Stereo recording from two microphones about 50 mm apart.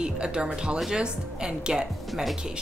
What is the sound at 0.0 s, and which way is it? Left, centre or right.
A woman's voice, centre.